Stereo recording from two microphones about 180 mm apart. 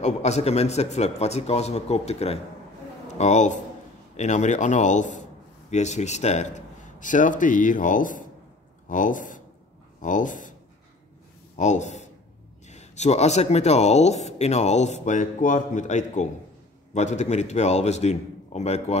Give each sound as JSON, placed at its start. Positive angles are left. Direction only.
{"t": 0.0, "sound": "a man's voice", "side_deg": 35}
{"t": 11.5, "sound": "speech", "side_deg": 40}